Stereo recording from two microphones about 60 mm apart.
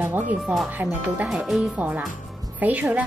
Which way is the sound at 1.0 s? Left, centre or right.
Right.